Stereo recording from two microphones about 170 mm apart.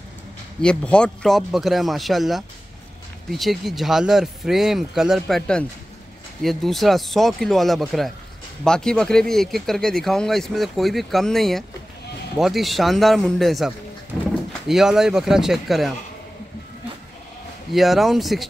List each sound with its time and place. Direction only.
0.6 s speech: 5° left (ahead or behind)
17.7 s speech: centre (ahead or behind)